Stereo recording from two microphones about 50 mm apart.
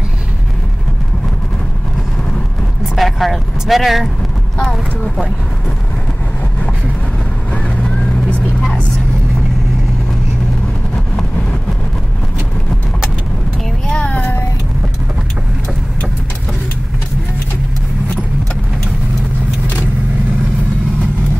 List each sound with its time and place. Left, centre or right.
3.0 s speech: centre
8.0 s vehicle: left
13.8 s music: left